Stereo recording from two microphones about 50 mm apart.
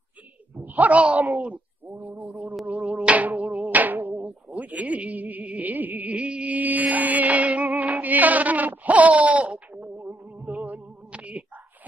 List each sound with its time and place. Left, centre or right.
0.6 s a sound: right
4.6 s insect: right
10.4 s music: right